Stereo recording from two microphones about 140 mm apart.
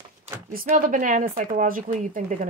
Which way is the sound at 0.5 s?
70° right (ahead or behind).